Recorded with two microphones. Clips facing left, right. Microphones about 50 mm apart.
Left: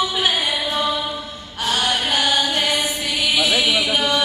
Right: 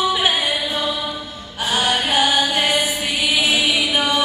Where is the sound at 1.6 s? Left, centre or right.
Right.